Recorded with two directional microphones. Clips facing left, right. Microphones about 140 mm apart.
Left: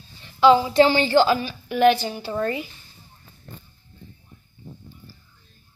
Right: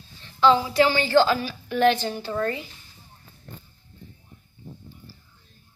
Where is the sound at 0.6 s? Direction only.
25° left (ahead or behind).